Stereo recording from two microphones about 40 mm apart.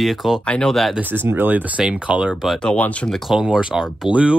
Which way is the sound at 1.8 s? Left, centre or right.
Centre.